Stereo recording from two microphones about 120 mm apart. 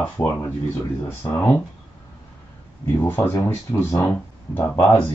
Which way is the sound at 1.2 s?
30° left (ahead or behind).